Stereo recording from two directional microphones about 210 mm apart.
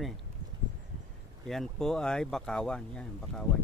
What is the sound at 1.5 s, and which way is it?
Speech, centre (ahead or behind).